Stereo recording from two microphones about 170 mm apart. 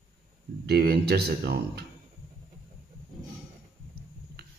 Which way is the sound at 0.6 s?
70° right (ahead or behind).